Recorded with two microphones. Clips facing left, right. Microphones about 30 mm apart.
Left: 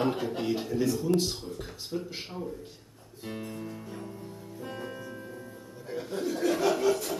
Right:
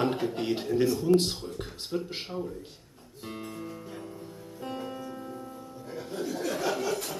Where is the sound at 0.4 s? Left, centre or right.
Right.